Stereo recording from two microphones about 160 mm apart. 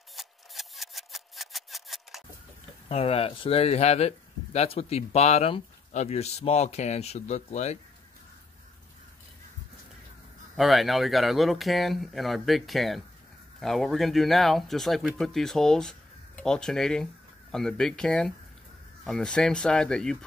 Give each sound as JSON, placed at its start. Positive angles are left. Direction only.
{"t": 0.1, "sound": "scissors", "side_deg": 0}
{"t": 2.9, "sound": "speech", "side_deg": 40}
{"t": 10.5, "sound": "speech", "side_deg": 0}